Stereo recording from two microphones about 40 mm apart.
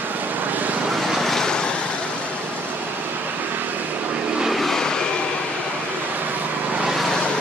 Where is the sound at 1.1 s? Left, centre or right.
Centre.